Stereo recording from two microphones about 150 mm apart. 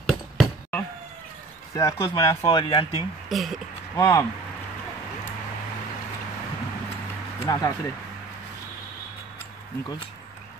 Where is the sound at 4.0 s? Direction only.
15° left (ahead or behind).